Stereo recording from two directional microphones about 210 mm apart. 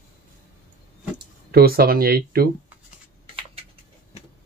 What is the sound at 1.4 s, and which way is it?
Speech, 50° right (ahead or behind).